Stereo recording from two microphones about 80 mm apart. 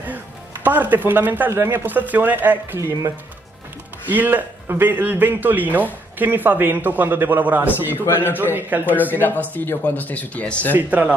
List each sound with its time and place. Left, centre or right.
0.7 s a man's voice: right
2.8 s speech: right
4.1 s a man's voice: right
9.2 s speech: left
10.9 s a man's voice: centre